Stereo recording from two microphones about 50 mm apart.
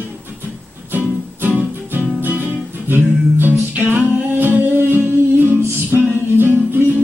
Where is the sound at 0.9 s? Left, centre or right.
Right.